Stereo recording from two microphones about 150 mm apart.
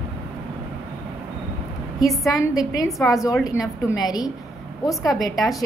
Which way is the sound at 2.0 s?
Centre (ahead or behind).